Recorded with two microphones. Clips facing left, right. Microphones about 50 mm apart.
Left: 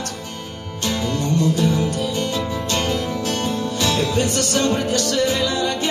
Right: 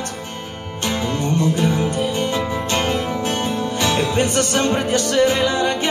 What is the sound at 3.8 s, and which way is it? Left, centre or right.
Music, right.